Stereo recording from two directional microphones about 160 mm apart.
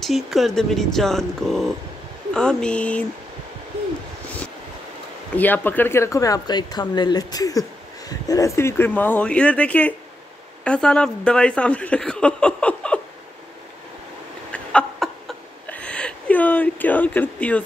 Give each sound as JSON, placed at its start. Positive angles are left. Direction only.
{"t": 0.0, "sound": "speech", "side_deg": 0}
{"t": 5.3, "sound": "speech", "side_deg": 10}
{"t": 14.5, "sound": "a sound", "side_deg": 5}